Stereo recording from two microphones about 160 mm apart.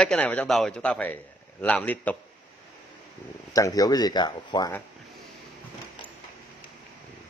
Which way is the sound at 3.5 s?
20° left (ahead or behind).